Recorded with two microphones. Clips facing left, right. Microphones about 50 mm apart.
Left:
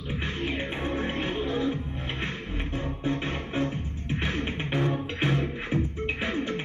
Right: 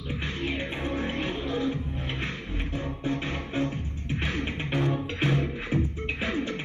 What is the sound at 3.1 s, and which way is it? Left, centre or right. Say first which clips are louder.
Music: left 1 dB; left.